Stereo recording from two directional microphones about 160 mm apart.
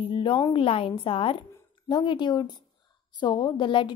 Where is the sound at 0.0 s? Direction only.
30° left (ahead or behind).